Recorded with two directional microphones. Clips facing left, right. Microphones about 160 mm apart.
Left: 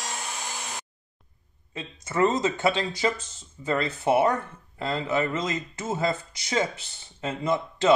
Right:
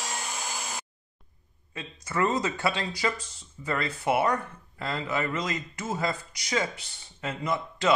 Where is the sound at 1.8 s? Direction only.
25° left (ahead or behind).